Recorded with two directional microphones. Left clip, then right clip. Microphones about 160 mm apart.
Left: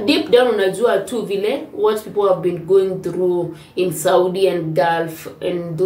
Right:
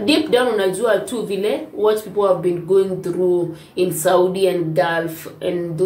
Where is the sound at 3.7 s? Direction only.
5° left (ahead or behind).